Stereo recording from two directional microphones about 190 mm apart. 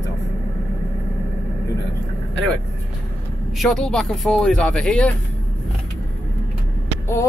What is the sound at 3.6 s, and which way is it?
Speech, 5° left (ahead or behind).